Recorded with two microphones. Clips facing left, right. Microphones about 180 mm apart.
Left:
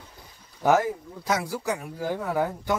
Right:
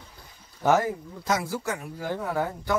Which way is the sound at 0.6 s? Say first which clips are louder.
Left 1 dB; 5° left (ahead or behind).